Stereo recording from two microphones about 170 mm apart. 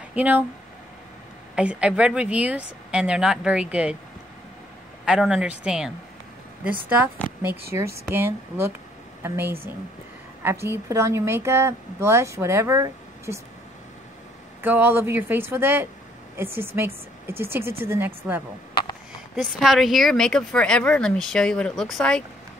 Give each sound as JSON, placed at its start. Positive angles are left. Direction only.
{"t": 0.1, "sound": "speech", "side_deg": -10}
{"t": 1.5, "sound": "a woman's voice", "side_deg": -5}
{"t": 5.0, "sound": "speech", "side_deg": -5}
{"t": 7.7, "sound": "a woman's voice", "side_deg": -15}
{"t": 14.6, "sound": "a woman's voice", "side_deg": -10}